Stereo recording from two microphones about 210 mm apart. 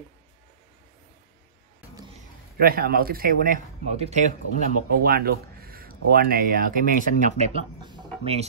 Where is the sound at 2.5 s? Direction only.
45° right (ahead or behind).